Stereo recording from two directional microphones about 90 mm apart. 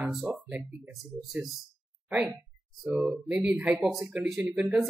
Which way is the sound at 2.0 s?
10° right (ahead or behind).